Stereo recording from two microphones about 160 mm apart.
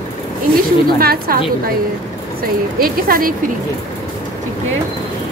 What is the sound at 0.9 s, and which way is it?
Speech, 70° right (ahead or behind).